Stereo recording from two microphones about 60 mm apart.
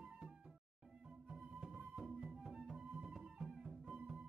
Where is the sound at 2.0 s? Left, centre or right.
Centre.